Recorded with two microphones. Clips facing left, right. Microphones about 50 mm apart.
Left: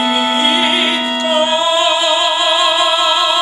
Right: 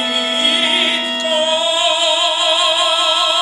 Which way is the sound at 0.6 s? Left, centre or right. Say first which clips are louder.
Left 2 dB; centre.